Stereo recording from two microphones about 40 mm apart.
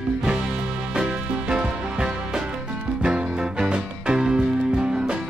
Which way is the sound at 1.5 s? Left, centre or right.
Right.